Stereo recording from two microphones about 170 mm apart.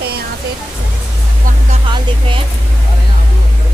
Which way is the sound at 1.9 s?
30° right (ahead or behind).